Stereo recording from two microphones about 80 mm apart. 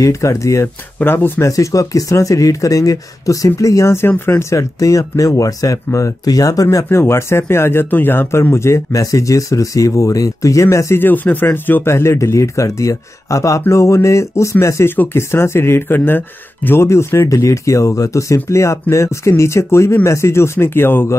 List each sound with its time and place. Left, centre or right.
0.0 s speech: left
1.0 s speech: left
1.5 s speech: left
6.9 s speech: left
11.0 s speech: left